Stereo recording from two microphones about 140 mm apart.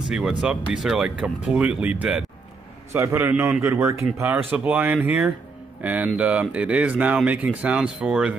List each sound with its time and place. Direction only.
0.1 s speech: 5° right (ahead or behind)
2.9 s a man's voice: 20° right (ahead or behind)